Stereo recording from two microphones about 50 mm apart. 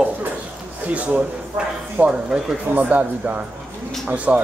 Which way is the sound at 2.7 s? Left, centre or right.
Right.